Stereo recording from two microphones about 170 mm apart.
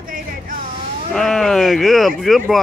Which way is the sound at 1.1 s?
5° left (ahead or behind).